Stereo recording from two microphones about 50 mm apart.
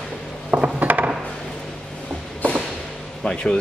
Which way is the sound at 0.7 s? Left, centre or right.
Right.